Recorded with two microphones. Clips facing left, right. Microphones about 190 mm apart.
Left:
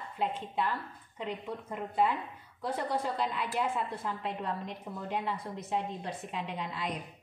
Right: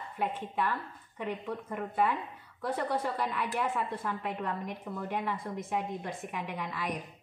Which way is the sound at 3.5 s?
15° left (ahead or behind).